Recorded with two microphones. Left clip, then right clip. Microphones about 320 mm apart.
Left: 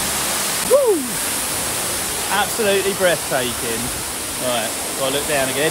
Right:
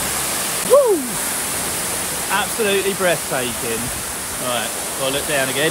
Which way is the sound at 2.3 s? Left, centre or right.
Centre.